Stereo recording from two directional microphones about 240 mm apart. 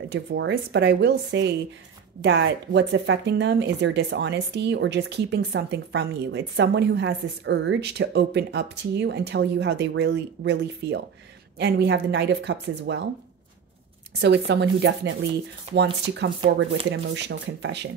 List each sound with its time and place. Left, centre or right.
0.1 s speech: right
14.2 s speech: right